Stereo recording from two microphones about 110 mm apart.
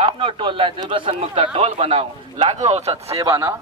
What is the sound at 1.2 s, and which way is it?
Speech, 65° right (ahead or behind).